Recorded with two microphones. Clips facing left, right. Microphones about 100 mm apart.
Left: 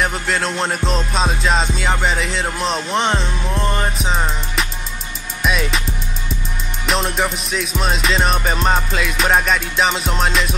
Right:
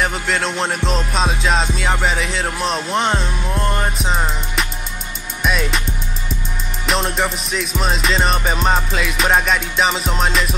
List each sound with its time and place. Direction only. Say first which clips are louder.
0.0 s music: even; centre (ahead or behind)
6.9 s music: even; centre (ahead or behind)